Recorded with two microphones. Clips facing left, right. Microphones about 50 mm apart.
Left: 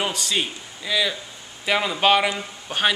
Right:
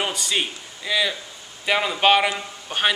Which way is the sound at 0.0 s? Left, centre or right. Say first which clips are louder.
Even; centre.